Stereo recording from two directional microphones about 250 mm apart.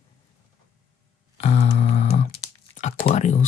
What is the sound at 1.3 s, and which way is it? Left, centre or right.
Speech, left.